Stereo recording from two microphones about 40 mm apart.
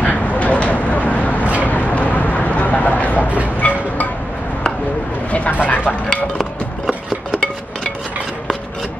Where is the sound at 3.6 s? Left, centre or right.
Left.